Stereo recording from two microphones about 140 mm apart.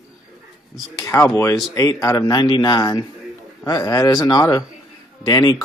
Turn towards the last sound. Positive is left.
turn(degrees=25)  # may be behind; listen again after turning